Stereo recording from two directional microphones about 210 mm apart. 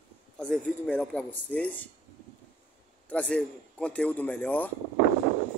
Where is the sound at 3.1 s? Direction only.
5° left (ahead or behind).